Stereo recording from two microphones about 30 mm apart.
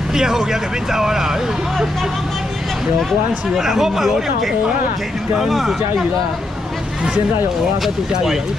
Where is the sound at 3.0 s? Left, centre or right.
Centre.